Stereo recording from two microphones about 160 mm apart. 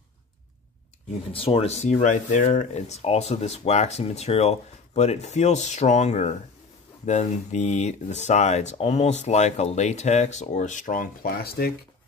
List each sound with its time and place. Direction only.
1.3 s speech: 35° left (ahead or behind); by 11.7 s 75° left (ahead or behind)